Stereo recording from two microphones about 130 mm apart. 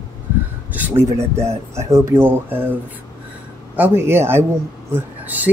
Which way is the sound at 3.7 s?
15° right (ahead or behind).